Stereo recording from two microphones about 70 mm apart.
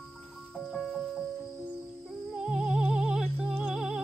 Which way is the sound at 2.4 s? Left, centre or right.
Centre.